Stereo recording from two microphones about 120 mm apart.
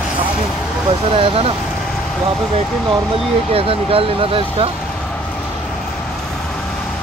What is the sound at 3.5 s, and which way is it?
Speech, 50° right (ahead or behind).